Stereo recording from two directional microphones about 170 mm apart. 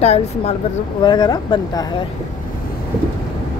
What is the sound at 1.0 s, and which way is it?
Speech, 25° left (ahead or behind).